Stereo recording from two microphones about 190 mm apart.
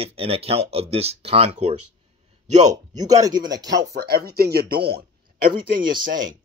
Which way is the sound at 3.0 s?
20° right (ahead or behind).